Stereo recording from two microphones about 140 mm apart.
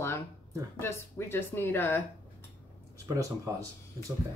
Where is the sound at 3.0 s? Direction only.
20° right (ahead or behind).